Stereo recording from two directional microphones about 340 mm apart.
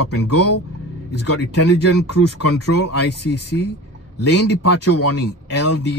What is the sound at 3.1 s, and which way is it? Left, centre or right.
Speech, left.